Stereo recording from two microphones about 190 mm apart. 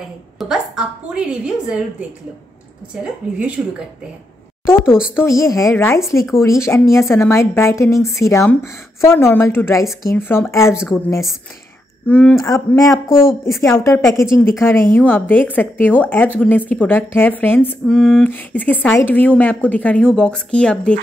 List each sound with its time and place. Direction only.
0.4 s a woman's voice: 5° right (ahead or behind)
4.6 s speech: 10° left (ahead or behind)
10.7 s a woman's voice: 5° right (ahead or behind)
12.1 s speech: 10° left (ahead or behind)